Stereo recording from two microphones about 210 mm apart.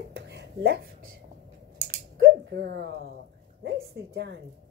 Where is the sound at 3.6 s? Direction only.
50° right (ahead or behind).